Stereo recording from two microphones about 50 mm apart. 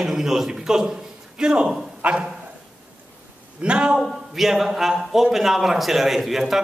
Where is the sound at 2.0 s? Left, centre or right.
Right.